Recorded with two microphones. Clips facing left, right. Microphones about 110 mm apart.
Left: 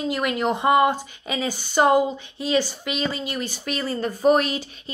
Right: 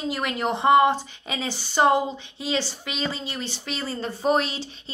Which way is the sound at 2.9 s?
35° right (ahead or behind).